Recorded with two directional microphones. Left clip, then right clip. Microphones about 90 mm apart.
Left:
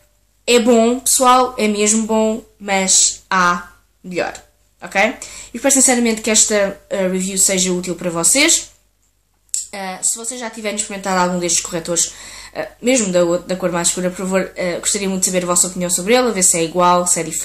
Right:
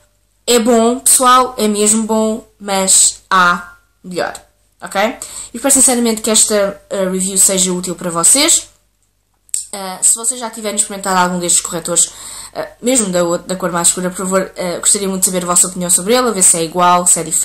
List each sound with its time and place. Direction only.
0.7 s a woman's voice: 20° right (ahead or behind)
9.7 s a woman's voice: 15° right (ahead or behind)